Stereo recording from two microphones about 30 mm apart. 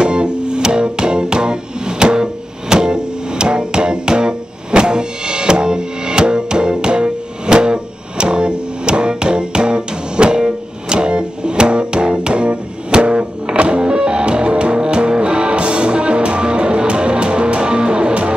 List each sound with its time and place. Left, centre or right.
0.0 s music: right